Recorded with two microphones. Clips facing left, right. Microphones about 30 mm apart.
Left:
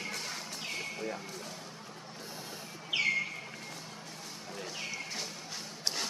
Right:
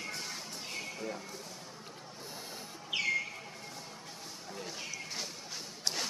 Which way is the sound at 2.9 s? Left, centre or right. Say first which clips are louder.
Left 3 dB; centre.